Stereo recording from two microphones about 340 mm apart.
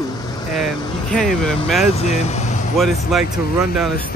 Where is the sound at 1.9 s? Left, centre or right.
Centre.